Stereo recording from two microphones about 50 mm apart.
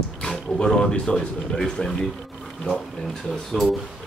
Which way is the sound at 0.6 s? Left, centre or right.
Centre.